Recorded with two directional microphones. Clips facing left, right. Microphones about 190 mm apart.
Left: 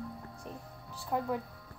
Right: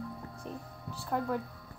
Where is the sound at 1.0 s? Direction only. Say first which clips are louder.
Right 1 dB; 5° left (ahead or behind).